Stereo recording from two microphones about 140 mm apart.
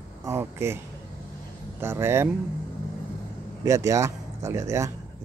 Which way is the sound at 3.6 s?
20° right (ahead or behind).